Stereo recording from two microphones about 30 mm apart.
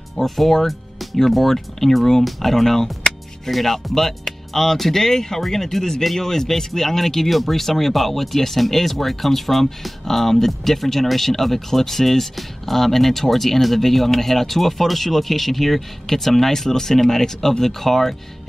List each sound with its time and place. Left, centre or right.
0.2 s speech: centre